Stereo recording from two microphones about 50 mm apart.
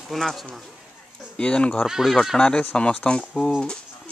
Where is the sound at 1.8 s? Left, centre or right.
Centre.